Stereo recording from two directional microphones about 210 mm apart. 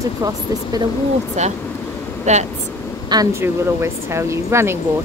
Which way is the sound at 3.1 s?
15° right (ahead or behind).